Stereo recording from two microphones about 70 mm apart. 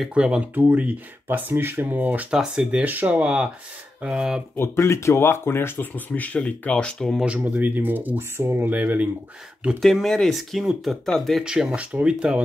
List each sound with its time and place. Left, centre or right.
0.1 s speech: centre
0.6 s speech: right
2.3 s speech: centre
2.8 s speech: right
4.6 s speech: left; by 7.2 s centre
7.2 s speech: right
8.7 s speech: right
9.8 s speech: centre
11.4 s speech: centre